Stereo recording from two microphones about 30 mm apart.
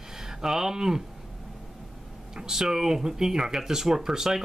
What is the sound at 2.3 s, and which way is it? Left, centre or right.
Speech, centre.